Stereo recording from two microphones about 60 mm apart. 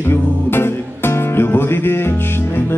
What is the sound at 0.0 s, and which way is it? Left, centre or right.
Music, left.